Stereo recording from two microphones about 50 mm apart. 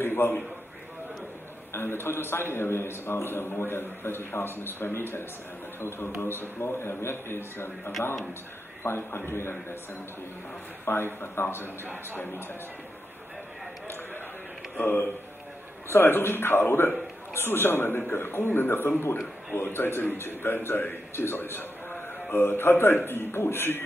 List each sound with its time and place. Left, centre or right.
0.0 s a sound: left
1.7 s a man's voice: left
11.1 s a man's voice: left
14.8 s a man's voice: left